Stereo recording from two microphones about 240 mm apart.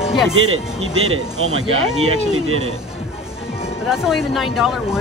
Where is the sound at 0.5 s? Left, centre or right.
Right.